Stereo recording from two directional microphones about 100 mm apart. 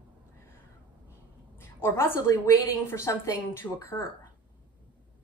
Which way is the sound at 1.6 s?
25° left (ahead or behind).